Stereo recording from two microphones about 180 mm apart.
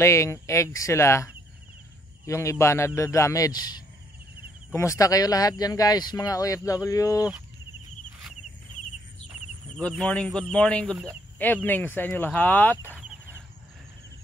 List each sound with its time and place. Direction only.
0.0 s speech: 15° left (ahead or behind)
9.8 s speech: 5° left (ahead or behind)